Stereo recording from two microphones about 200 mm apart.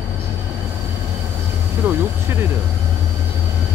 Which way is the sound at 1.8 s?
10° right (ahead or behind).